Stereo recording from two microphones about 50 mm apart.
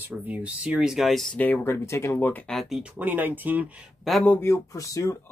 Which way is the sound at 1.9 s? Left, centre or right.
Left.